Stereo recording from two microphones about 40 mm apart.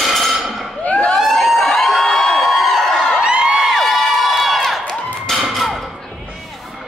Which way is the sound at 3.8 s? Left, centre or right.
Centre.